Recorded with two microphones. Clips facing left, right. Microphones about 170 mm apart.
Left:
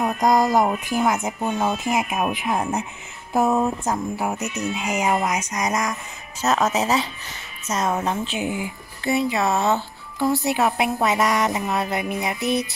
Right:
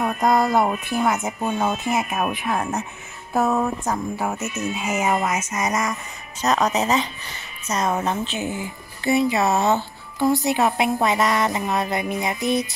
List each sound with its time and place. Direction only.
0.0 s speech: 15° left (ahead or behind)
1.0 s speech: centre (ahead or behind); by 5.0 s 15° left (ahead or behind)
5.3 s speech: 5° right (ahead or behind); by 8.7 s 10° left (ahead or behind)
9.0 s speech: centre (ahead or behind)